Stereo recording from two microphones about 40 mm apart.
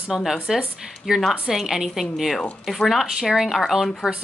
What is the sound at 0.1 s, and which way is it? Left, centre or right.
Speech, centre.